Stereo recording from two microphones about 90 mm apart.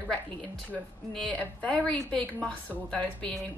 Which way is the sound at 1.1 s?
10° left (ahead or behind).